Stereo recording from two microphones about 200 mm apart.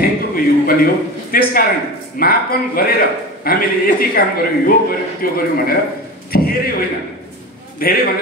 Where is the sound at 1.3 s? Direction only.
45° left (ahead or behind).